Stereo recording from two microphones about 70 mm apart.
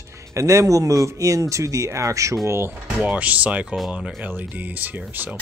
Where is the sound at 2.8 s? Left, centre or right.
Centre.